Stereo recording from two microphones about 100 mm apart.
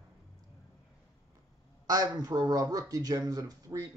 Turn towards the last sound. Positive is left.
turn(degrees=-35)  # may be behind; listen again after turning